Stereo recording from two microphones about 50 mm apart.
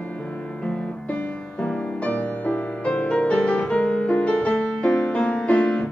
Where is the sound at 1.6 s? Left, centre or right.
Left.